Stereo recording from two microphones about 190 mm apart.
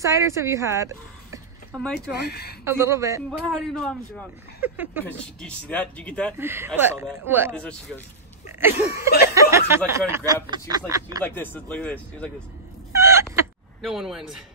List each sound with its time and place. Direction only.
0.0 s speech: 15° right (ahead or behind)
2.0 s speech: 60° left (ahead or behind)
2.6 s speech: 15° right (ahead or behind)
3.3 s a man's voice: 5° left (ahead or behind)
4.6 s speech: 10° right (ahead or behind)
5.0 s speech: 5° left (ahead or behind)
6.3 s speech: 10° right (ahead or behind)
11.2 s speech: 10° left (ahead or behind)
12.9 s a sound: 15° right (ahead or behind)
13.7 s a man's voice: centre (ahead or behind)